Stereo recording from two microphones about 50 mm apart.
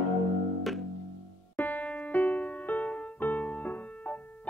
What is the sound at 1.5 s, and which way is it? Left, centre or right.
Keyboard, left.